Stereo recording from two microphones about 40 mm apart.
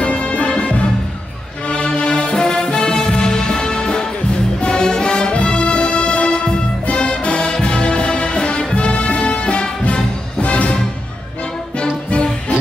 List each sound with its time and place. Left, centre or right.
0.0 s music: left
12.1 s music: left